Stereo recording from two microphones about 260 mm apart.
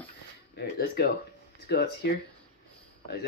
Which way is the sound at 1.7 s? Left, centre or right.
Left.